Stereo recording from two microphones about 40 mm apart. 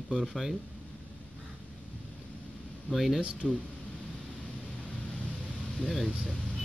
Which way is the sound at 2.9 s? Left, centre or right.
Centre.